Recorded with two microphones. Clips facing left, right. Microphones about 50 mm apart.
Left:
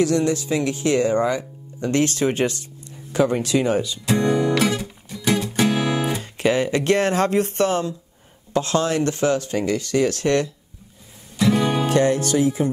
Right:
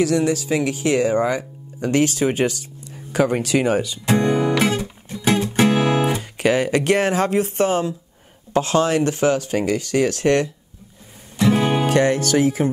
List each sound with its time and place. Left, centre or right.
0.0 s speech: centre
4.0 s guitar: right
6.3 s speech: centre
11.3 s music: right
12.6 s speech: right